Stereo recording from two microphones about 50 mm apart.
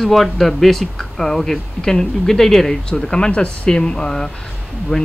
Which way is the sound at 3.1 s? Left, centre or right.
Centre.